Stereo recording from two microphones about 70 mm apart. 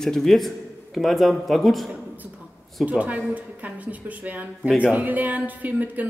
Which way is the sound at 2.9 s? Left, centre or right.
Right.